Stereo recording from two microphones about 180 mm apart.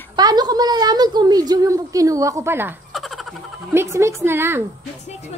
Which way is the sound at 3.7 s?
15° right (ahead or behind).